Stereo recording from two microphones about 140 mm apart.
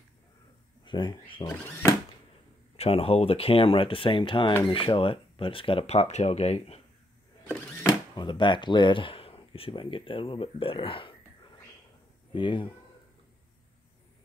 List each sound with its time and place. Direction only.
0.8 s speech: 35° left (ahead or behind)
1.4 s speech: 15° left (ahead or behind)
2.7 s speech: 45° left (ahead or behind)
8.2 s speech: 35° left (ahead or behind)